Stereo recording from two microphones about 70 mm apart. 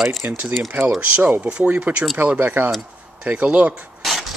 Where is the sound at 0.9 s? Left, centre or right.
Right.